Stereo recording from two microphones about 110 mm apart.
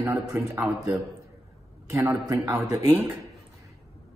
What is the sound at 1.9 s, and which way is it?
Speech, 25° right (ahead or behind).